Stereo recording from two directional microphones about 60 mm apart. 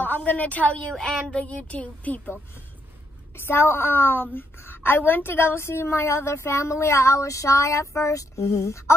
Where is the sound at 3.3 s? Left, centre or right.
Left.